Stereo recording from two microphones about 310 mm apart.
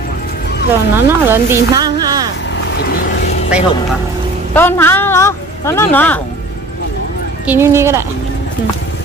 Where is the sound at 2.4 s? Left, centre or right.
Left.